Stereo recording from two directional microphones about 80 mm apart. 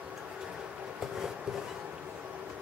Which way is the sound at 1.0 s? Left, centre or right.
Centre.